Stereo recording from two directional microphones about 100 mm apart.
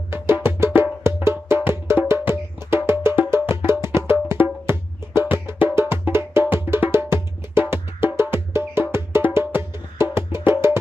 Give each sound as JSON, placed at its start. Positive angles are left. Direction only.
{"t": 0.1, "sound": "music", "side_deg": -25}